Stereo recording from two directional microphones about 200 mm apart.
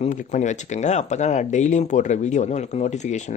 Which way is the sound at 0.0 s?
35° left (ahead or behind).